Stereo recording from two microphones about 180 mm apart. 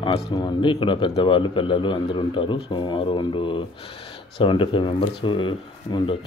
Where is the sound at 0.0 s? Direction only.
25° left (ahead or behind).